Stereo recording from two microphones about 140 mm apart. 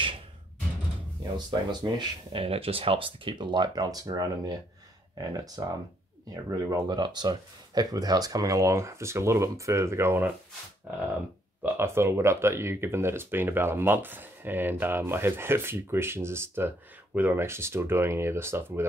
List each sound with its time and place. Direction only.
1.7 s speech: 30° right (ahead or behind); by 10.3 s 15° right (ahead or behind)
11.6 s speech: 15° right (ahead or behind)